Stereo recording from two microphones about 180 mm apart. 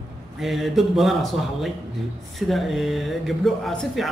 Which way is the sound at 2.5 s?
Centre (ahead or behind).